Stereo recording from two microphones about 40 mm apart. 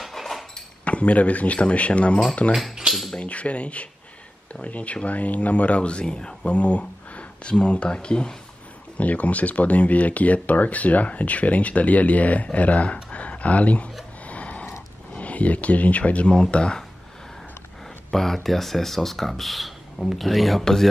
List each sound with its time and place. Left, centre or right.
0.1 s a sound: centre
0.8 s speech: left
2.5 s speech: centre
3.2 s speech: left
6.4 s speech: left
8.9 s speech: left
14.2 s a sound: left
15.1 s speech: left
18.1 s speech: centre
20.6 s speech: centre